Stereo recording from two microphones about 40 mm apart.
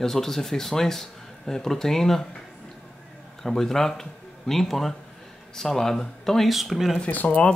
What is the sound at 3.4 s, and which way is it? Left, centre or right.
Speech, centre.